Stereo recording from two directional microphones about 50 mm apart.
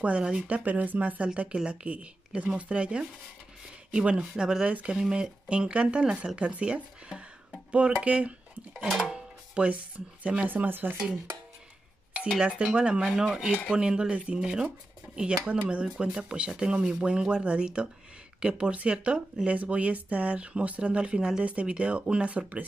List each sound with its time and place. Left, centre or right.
0.0 s speech: right
0.7 s speech: right
8.8 s music: centre
9.1 s music: right
10.5 s speech: right
12.4 s speech: centre